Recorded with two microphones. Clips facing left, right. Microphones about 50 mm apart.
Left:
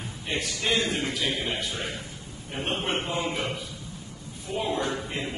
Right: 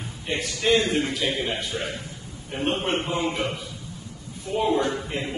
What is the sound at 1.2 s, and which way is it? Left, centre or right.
Speech, right.